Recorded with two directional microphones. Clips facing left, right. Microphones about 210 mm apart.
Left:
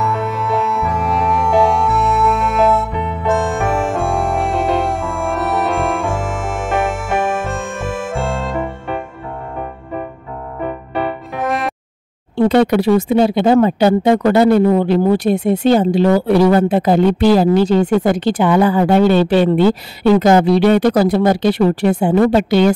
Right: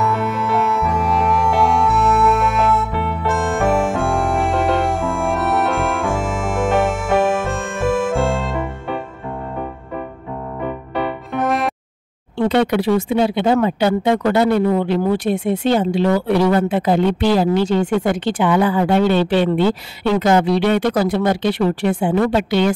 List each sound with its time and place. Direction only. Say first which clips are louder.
0.0 s music: even; centre (ahead or behind)
11.3 s music: right 2 dB; centre (ahead or behind)
12.4 s speech: left 4 dB; 40° left (ahead or behind)